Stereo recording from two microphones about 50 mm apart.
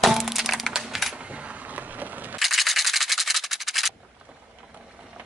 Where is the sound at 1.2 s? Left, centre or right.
Right.